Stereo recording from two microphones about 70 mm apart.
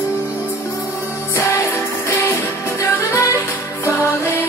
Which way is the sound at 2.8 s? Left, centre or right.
Left.